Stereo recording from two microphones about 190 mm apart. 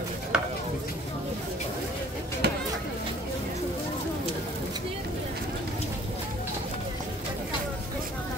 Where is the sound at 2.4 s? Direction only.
60° right (ahead or behind).